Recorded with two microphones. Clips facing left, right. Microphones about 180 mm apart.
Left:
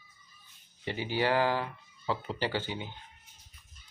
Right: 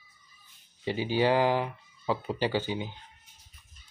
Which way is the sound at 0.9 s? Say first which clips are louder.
Right 4 dB; 15° right (ahead or behind).